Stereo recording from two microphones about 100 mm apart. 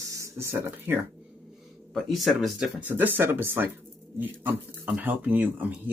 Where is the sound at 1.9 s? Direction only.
Centre (ahead or behind).